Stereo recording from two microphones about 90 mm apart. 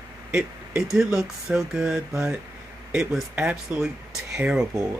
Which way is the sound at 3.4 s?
15° right (ahead or behind).